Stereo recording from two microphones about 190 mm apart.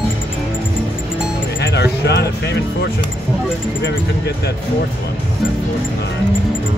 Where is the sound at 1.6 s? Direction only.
60° left (ahead or behind).